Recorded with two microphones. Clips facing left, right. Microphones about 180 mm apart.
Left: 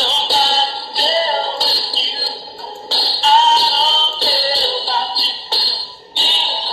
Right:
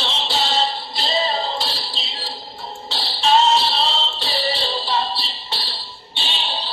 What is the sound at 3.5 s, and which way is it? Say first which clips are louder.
Music: left 2 dB; 40° left (ahead or behind).